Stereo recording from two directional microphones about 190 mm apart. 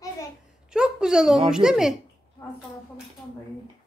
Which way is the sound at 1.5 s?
Centre (ahead or behind).